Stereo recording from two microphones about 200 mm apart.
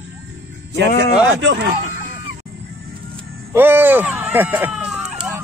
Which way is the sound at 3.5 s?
10° right (ahead or behind).